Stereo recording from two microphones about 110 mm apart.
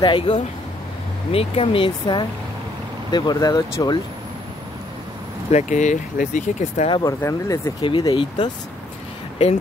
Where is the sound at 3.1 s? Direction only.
40° left (ahead or behind).